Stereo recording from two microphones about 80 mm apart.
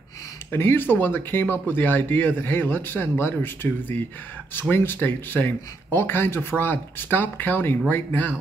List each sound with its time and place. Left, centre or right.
0.5 s speech: left